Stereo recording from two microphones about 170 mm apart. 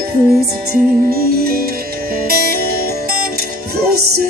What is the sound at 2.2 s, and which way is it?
Music, 60° right (ahead or behind).